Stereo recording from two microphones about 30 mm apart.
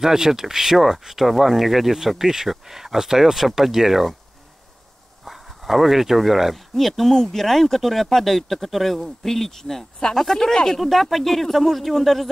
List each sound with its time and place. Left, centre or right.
0.0 s speech: centre
5.2 s speech: centre
10.8 s speech: centre